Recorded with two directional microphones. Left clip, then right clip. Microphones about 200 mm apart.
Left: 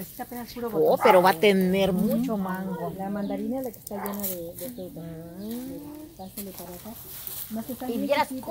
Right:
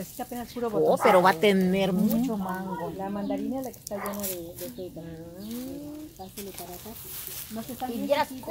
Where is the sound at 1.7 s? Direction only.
30° left (ahead or behind).